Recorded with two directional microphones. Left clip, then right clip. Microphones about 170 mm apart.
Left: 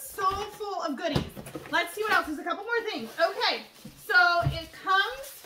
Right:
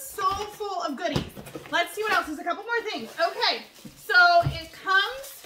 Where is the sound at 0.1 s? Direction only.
Centre (ahead or behind).